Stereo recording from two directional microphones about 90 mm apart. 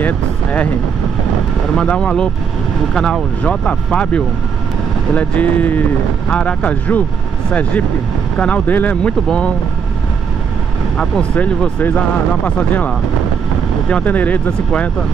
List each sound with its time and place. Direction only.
0.0 s speech: 15° left (ahead or behind)
1.8 s speech: 10° left (ahead or behind)
8.4 s speech: 15° left (ahead or behind)
11.0 s speech: 15° left (ahead or behind)